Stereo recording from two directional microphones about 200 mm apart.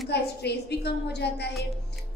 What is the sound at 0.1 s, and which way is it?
A woman's voice, 55° left (ahead or behind).